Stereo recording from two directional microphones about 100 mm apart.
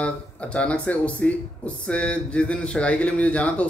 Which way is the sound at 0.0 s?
10° left (ahead or behind).